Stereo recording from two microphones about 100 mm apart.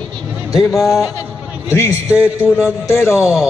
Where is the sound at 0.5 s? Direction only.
35° left (ahead or behind).